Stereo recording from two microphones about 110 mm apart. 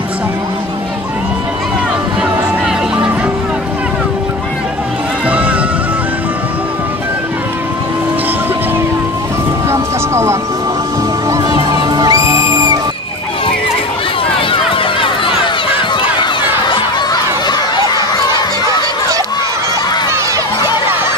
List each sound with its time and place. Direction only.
9.7 s vehicle: 25° right (ahead or behind)
11.2 s music: 35° right (ahead or behind)
14.5 s run: 50° left (ahead or behind)
16.6 s a sound: 45° left (ahead or behind)